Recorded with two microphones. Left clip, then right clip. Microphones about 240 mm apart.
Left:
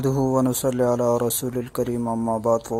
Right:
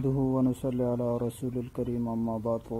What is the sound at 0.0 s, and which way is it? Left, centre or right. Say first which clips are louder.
Speech: left 7 dB; left.